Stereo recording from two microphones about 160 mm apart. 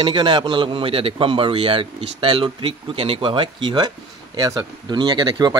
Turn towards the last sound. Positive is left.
turn(degrees=-30)  # may be behind; listen again after turning